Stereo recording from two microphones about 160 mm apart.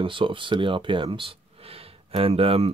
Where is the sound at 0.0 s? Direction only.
30° right (ahead or behind).